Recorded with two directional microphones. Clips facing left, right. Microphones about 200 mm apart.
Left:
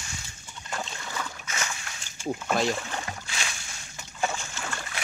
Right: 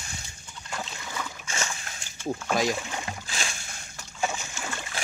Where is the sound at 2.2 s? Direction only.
10° left (ahead or behind).